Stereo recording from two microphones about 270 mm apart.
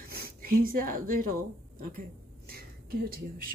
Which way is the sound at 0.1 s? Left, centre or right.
Right.